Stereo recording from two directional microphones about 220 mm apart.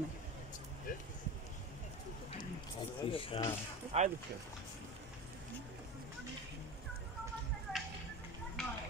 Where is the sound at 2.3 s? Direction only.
25° left (ahead or behind).